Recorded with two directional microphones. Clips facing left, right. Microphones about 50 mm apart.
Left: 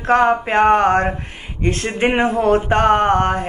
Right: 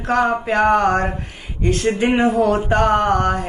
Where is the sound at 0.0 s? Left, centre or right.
Left.